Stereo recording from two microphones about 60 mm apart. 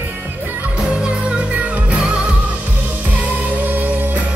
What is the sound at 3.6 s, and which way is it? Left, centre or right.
Music, right.